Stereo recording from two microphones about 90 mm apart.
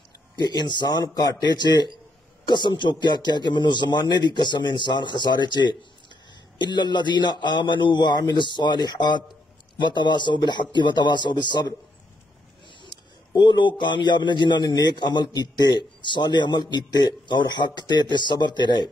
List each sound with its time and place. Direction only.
0.4 s a man's voice: 55° left (ahead or behind)
12.8 s a man's voice: 60° left (ahead or behind)